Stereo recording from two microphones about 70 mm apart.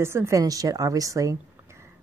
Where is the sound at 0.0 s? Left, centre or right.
Right.